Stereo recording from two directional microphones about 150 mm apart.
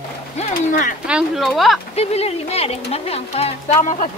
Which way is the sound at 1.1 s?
5° right (ahead or behind).